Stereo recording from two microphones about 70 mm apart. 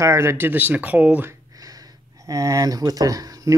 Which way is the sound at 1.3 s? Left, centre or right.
Right.